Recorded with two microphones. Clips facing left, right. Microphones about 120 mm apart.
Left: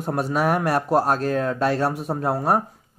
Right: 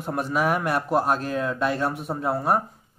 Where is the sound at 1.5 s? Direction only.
40° left (ahead or behind).